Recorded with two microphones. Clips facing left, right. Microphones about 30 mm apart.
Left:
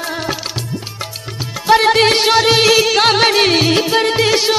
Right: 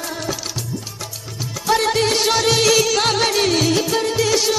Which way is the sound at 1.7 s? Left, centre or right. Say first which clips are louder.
Left 7 dB; left.